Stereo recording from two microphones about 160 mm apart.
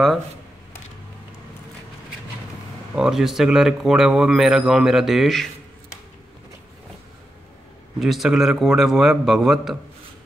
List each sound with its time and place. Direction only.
3.0 s a man's voice: centre (ahead or behind)
8.0 s a man's voice: centre (ahead or behind)